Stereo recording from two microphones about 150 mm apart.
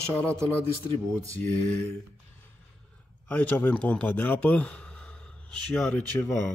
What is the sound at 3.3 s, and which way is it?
Speech, 10° left (ahead or behind).